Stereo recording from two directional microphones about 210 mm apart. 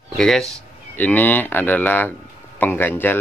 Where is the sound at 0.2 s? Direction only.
Centre (ahead or behind).